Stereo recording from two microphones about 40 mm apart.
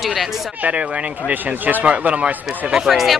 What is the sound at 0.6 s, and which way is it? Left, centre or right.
Speech, right.